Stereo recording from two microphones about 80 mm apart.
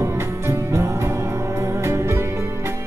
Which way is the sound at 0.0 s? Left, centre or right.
Right.